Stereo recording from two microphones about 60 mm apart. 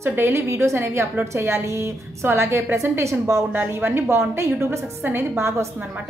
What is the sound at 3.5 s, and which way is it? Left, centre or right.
A woman's voice, right.